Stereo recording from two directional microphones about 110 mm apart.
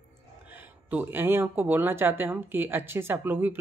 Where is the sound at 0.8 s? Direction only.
20° right (ahead or behind).